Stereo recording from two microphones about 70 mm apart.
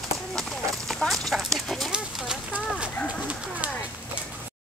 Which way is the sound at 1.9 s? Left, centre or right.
Centre.